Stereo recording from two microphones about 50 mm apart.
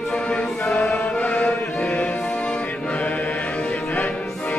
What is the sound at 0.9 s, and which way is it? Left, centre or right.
Music, left.